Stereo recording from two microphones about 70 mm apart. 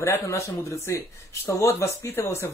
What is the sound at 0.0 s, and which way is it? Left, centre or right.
Speech, left.